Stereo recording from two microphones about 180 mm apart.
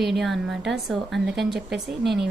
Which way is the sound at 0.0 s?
Centre (ahead or behind).